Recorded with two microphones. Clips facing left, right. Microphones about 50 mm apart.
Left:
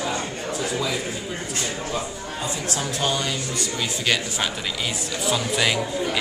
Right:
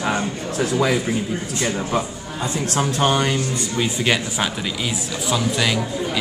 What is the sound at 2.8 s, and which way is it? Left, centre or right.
Speech, right.